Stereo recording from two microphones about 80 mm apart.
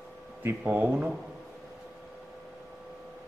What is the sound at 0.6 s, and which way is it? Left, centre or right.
Speech, centre.